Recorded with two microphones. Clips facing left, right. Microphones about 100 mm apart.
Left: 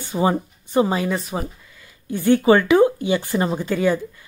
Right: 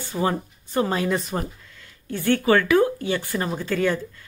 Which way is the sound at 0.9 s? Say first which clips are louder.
Left 1 dB; centre (ahead or behind).